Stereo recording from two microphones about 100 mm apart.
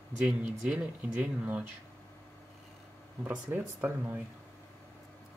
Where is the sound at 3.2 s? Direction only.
20° right (ahead or behind).